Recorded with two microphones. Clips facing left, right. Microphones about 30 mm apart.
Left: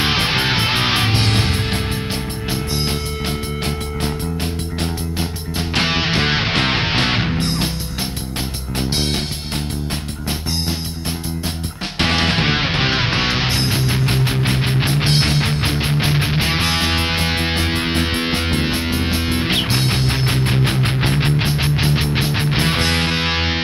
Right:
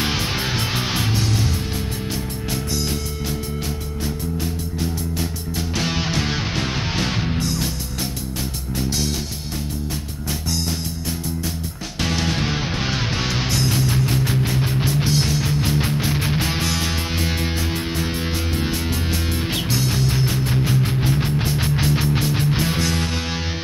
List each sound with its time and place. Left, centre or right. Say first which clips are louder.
0.0 s music: left 5 dB; left
2.5 s music: left 3 dB; left
3.6 s music: left 4 dB; left
8.7 s music: left 3 dB; left
12.0 s music: left 5 dB; left
21.6 s music: left 2 dB; left